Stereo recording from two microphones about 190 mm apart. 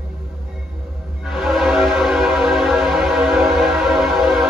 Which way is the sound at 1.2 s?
Centre (ahead or behind).